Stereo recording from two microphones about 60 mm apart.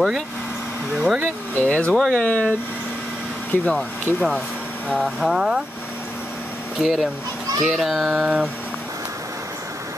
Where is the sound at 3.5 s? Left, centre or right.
Left.